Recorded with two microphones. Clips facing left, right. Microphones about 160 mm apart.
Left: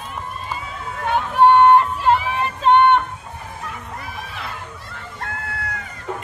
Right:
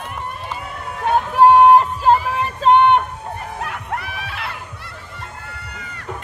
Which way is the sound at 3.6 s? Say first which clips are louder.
Right 6 dB; 70° right (ahead or behind).